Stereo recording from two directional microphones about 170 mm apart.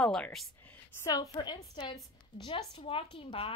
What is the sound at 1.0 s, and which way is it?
A woman's voice, 25° left (ahead or behind).